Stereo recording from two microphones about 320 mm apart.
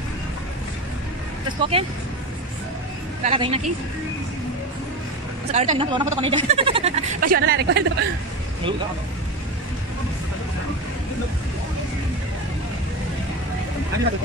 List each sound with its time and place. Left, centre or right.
1.6 s speech: centre
3.3 s speech: centre
5.5 s speech: right